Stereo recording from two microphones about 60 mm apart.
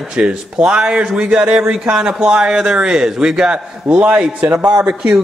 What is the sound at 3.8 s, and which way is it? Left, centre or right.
Speech, right.